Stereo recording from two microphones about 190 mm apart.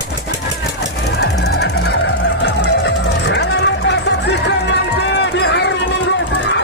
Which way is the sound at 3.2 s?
65° left (ahead or behind).